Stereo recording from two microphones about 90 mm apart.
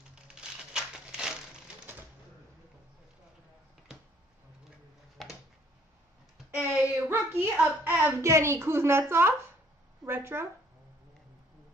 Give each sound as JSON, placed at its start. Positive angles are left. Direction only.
{"t": 0.1, "sound": "crumpling", "side_deg": -10}
{"t": 5.1, "sound": "a sound", "side_deg": 0}
{"t": 6.5, "sound": "a child's voice", "side_deg": -15}
{"t": 10.0, "sound": "a woman's voice", "side_deg": -25}